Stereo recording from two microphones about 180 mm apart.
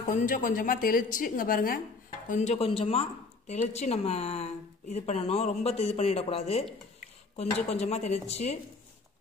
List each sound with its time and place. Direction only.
0.0 s a woman's voice: 45° left (ahead or behind)
2.2 s speech: 40° left (ahead or behind)
7.7 s speech: 40° left (ahead or behind)